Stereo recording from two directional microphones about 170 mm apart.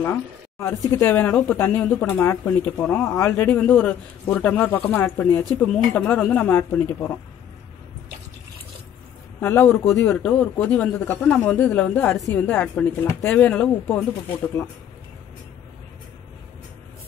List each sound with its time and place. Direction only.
0.0 s speech: 15° left (ahead or behind)
9.4 s speech: 10° left (ahead or behind)